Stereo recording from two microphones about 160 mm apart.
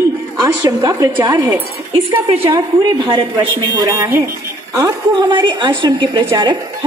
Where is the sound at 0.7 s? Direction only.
20° right (ahead or behind).